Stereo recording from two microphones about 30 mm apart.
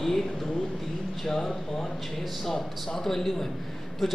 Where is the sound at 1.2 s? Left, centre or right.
Centre.